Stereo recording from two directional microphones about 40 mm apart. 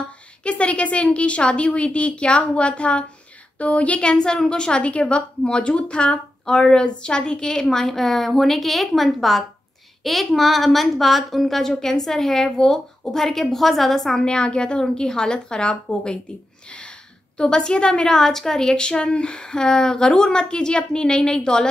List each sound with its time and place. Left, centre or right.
0.4 s a woman's voice: left; by 14.2 s centre
14.2 s a woman's voice: left
17.4 s a woman's voice: left
18.1 s a woman's voice: centre